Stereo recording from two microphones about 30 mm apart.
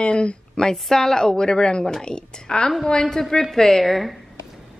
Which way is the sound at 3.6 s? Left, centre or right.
Centre.